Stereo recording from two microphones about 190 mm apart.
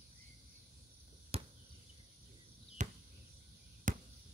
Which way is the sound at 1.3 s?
30° right (ahead or behind).